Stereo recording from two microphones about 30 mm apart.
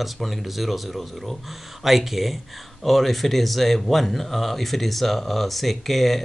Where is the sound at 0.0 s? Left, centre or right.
Centre.